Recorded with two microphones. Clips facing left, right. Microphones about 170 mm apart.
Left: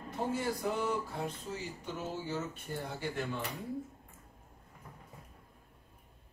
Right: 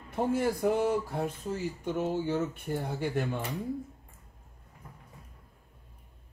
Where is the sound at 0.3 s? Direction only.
55° right (ahead or behind).